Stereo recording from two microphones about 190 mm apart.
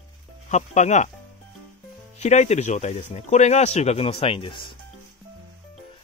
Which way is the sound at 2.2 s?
35° left (ahead or behind).